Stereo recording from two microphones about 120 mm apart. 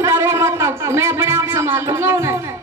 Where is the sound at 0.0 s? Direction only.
25° right (ahead or behind).